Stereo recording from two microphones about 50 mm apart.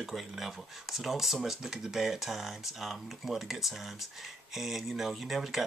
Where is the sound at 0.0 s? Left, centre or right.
Centre.